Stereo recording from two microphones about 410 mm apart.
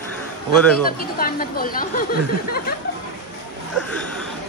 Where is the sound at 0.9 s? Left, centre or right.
Left.